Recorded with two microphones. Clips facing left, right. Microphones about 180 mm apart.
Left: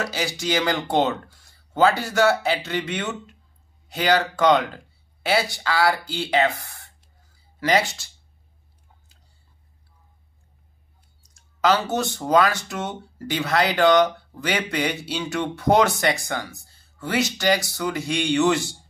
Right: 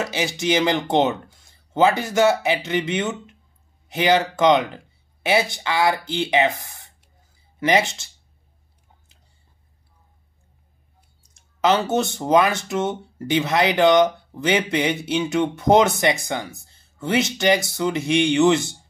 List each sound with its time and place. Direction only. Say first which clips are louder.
0.0 s speech: right 3 dB; 20° right (ahead or behind)
11.3 s speech: right 1 dB; 20° right (ahead or behind)